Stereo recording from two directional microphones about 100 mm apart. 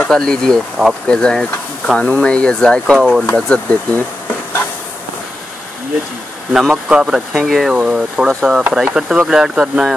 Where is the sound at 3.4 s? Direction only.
10° left (ahead or behind).